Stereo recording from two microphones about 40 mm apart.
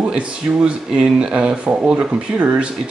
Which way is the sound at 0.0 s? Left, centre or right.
Right.